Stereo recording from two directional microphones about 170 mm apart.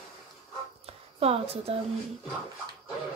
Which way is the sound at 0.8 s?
35° right (ahead or behind).